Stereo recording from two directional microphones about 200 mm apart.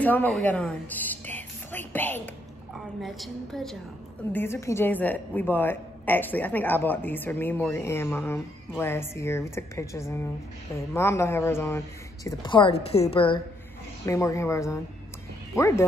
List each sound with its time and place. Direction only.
0.0 s a woman's voice: 10° left (ahead or behind)
4.3 s speech: 10° left (ahead or behind)
12.3 s a woman's voice: 25° left (ahead or behind)
14.0 s speech: 15° left (ahead or behind)